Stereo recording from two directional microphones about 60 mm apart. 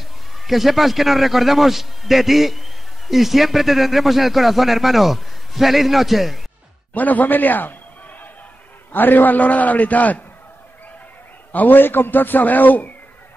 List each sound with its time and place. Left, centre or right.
0.5 s speech: centre
6.9 s a man's voice: left
8.9 s a man's voice: left
11.5 s a man's voice: left